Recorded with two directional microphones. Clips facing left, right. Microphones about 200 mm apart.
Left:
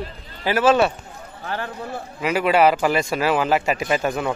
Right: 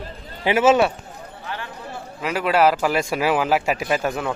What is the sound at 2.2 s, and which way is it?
Speech, centre (ahead or behind).